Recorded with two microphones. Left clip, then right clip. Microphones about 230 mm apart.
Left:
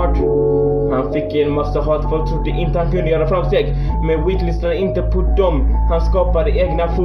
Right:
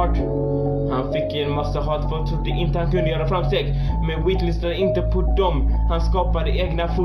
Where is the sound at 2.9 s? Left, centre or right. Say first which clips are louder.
Left 5 dB; right.